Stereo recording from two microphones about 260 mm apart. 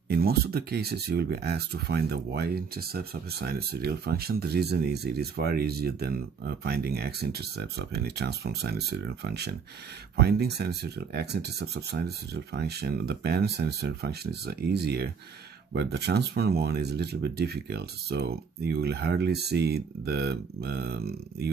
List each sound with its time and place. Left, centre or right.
0.1 s speech: right